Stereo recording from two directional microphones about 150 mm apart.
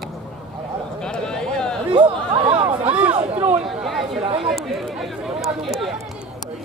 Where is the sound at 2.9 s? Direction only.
10° right (ahead or behind).